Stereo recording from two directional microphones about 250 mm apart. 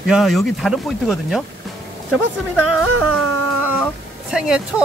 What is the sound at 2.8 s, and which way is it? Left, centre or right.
Music, right.